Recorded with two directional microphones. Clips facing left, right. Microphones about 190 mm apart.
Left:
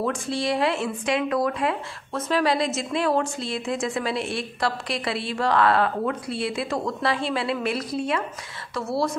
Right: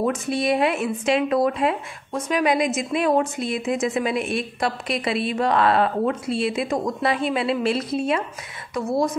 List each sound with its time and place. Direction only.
0.0 s speech: 20° right (ahead or behind)